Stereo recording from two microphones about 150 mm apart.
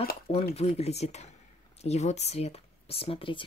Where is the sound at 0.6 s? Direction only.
45° left (ahead or behind).